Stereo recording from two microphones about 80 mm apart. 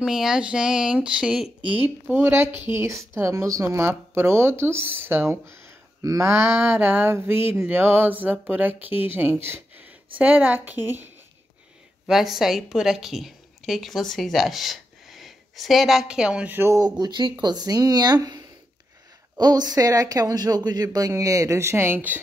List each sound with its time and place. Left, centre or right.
0.0 s speech: centre
1.7 s speech: right
12.1 s speech: centre
16.4 s speech: right
16.9 s speech: right